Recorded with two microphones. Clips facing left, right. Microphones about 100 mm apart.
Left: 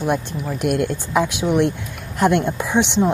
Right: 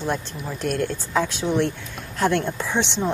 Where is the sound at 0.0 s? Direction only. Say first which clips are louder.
Left 5 dB; 15° left (ahead or behind).